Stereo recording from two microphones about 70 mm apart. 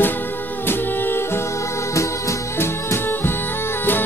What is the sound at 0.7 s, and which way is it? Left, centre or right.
Music, left.